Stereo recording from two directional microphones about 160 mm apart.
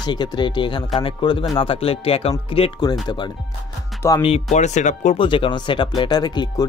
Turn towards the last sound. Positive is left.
turn(degrees=25)  # may be behind; listen again after turning